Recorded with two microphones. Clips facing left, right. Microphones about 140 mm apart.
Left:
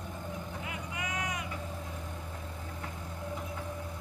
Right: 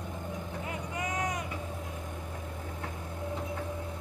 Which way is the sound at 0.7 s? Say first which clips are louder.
Right 4 dB; 40° right (ahead or behind).